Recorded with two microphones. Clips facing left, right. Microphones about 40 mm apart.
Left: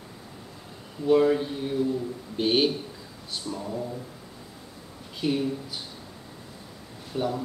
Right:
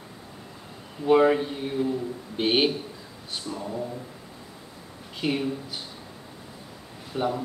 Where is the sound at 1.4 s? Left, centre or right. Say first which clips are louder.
Even; centre.